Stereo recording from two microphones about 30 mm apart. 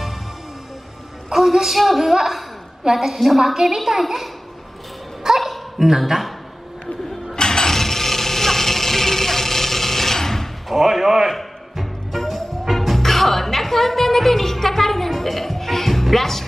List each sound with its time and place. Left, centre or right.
1.3 s a woman's voice: centre
5.4 s a sound: centre
7.3 s a sound: left
7.7 s music: centre
10.7 s speech: centre
11.8 s music: centre